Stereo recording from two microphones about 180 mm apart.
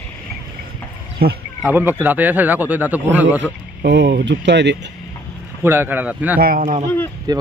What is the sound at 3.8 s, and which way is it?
Speech, 70° right (ahead or behind).